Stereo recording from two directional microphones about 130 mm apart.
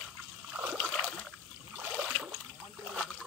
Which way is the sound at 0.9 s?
5° left (ahead or behind).